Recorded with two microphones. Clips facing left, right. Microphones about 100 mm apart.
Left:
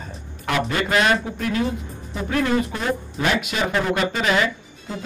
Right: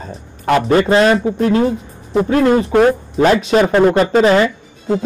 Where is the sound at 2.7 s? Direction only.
60° right (ahead or behind).